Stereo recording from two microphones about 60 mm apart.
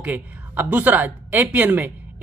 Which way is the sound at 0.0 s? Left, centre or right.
Right.